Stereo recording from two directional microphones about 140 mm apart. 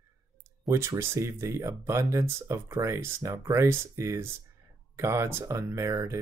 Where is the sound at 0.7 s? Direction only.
20° right (ahead or behind).